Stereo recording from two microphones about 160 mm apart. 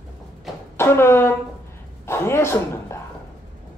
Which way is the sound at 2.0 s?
15° left (ahead or behind).